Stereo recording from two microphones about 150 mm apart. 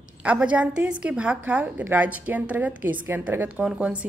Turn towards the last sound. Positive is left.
turn(degrees=-10)  # may be behind; listen again after turning